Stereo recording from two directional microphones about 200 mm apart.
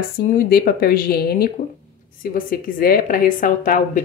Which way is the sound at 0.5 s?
50° left (ahead or behind).